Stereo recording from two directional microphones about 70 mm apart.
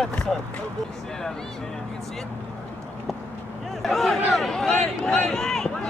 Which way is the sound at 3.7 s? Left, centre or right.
Centre.